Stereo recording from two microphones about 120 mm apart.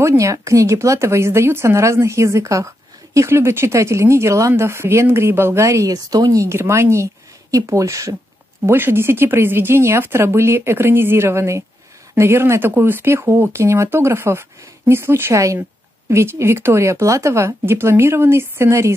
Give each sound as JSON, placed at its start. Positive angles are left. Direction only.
{"t": 0.0, "sound": "speech", "side_deg": -25}